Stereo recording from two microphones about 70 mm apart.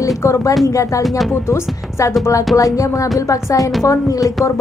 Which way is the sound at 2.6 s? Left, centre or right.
Left.